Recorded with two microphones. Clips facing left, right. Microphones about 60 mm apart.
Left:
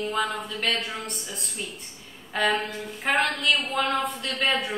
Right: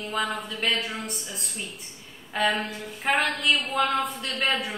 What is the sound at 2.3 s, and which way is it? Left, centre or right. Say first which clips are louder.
A woman's voice: left 1 dB; centre.